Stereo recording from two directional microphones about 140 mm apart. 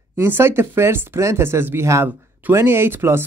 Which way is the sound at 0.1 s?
15° right (ahead or behind).